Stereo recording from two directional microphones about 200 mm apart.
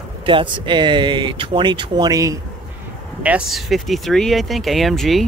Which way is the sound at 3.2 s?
5° right (ahead or behind).